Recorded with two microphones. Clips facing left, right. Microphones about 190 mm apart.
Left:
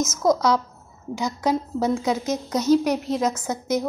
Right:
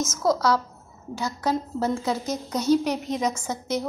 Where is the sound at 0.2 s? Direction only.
15° left (ahead or behind).